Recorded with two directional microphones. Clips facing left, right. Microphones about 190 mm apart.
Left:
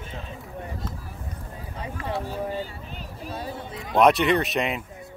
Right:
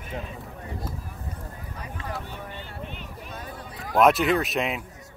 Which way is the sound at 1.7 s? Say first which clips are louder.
Left 6 dB; 25° left (ahead or behind).